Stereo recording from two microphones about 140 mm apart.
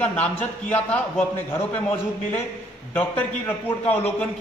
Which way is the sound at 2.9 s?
10° left (ahead or behind).